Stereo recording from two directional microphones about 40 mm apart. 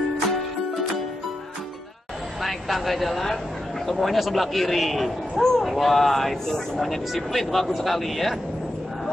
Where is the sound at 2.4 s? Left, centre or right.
Centre.